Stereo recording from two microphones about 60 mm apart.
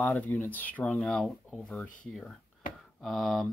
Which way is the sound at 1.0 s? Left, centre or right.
Centre.